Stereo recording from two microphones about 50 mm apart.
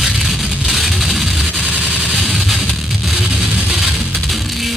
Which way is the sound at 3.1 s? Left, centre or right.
Right.